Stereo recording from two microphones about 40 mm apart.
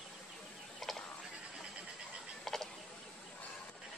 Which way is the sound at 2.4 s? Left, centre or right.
Centre.